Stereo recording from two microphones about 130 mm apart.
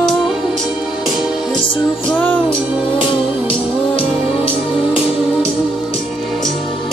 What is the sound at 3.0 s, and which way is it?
Music, 45° left (ahead or behind).